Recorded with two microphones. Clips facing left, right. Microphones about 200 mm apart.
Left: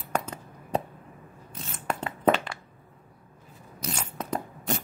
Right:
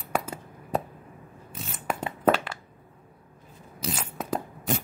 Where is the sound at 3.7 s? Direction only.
5° right (ahead or behind).